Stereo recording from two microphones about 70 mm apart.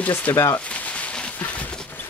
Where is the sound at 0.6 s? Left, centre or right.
Centre.